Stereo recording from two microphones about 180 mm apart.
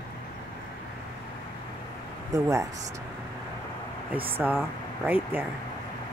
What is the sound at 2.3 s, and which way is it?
Speech, 20° right (ahead or behind).